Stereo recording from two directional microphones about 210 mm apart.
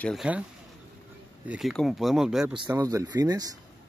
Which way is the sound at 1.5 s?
Centre (ahead or behind).